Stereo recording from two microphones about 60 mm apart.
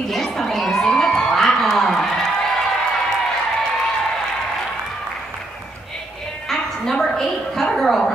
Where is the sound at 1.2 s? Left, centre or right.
Centre.